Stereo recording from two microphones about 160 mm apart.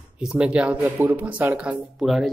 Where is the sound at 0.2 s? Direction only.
5° right (ahead or behind).